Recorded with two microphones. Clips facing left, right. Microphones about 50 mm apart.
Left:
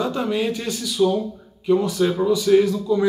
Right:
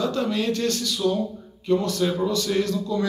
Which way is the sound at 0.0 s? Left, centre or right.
Centre.